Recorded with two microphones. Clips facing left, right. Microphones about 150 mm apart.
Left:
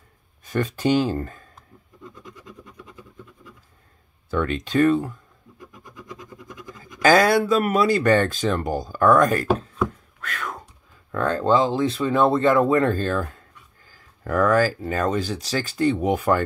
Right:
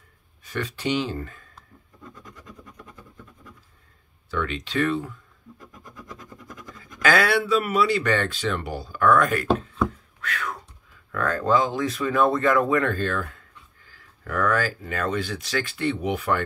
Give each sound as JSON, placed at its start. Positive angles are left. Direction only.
{"t": 0.5, "sound": "speech", "side_deg": 45}
{"t": 2.0, "sound": "vehicle", "side_deg": 20}
{"t": 4.3, "sound": "speech", "side_deg": 45}
{"t": 5.7, "sound": "scratch", "side_deg": 15}
{"t": 7.0, "sound": "speech", "side_deg": 40}
{"t": 10.2, "sound": "whispering", "side_deg": 45}
{"t": 11.1, "sound": "speech", "side_deg": 30}